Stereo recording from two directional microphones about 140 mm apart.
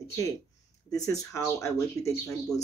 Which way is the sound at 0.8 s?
25° left (ahead or behind).